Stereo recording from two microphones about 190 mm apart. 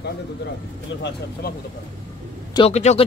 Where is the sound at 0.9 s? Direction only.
75° left (ahead or behind).